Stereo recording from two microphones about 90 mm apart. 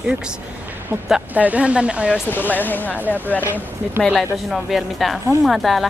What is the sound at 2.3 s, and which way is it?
Speech, 20° left (ahead or behind).